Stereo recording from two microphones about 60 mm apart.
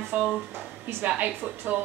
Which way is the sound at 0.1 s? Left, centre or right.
Right.